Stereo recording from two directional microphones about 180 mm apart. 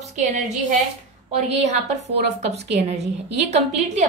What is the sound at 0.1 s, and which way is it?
Speech, 40° right (ahead or behind).